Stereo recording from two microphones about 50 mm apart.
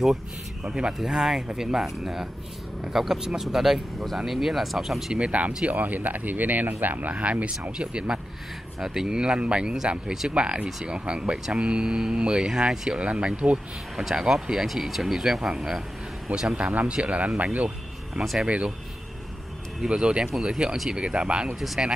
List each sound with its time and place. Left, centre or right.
0.7 s speech: centre
5.1 s speech: right
8.7 s speech: centre; by 13.6 s right
13.9 s speech: centre
14.7 s speech: centre
16.5 s speech: right
17.6 s music: centre
18.4 s speech: right
19.9 s speech: centre
21.5 s speech: centre